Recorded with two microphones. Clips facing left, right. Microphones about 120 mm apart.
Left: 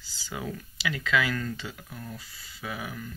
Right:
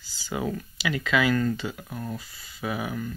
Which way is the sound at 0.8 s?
15° right (ahead or behind).